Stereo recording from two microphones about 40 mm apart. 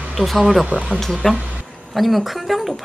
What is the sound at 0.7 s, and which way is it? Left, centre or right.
Speech, right.